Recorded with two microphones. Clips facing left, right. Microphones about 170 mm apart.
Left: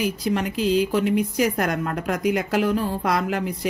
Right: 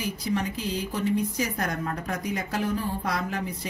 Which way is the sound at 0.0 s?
75° left (ahead or behind).